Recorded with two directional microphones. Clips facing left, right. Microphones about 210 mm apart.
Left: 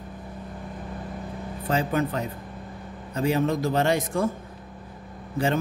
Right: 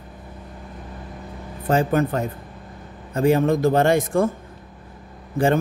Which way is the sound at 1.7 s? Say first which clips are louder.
Right 5 dB; 50° right (ahead or behind).